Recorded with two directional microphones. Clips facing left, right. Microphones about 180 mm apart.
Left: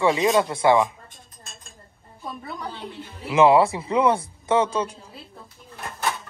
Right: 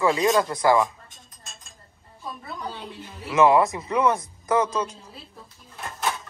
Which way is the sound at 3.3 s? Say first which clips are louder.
Left 2 dB; 30° left (ahead or behind).